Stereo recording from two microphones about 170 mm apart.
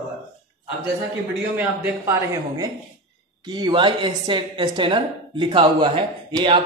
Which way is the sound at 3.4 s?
25° right (ahead or behind).